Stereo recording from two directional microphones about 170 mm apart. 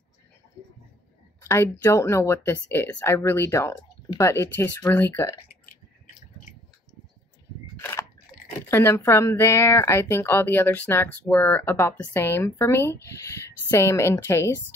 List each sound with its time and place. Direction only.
1.4 s speech: 15° left (ahead or behind)
7.7 s camera: 15° left (ahead or behind)
8.3 s drip: 60° left (ahead or behind)
8.6 s speech: 15° left (ahead or behind)
11.6 s speech: 15° left (ahead or behind)